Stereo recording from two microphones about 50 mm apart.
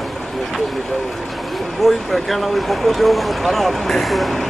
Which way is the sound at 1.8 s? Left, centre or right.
Centre.